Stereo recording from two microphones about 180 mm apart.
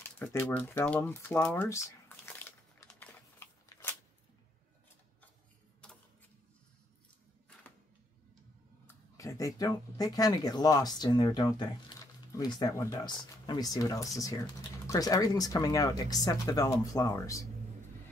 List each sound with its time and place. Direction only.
0.0 s a sound: 10° left (ahead or behind)
5.8 s printer: 5° left (ahead or behind)
8.8 s speech: 15° left (ahead or behind)